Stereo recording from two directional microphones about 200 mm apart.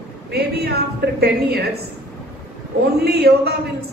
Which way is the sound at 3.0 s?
55° right (ahead or behind).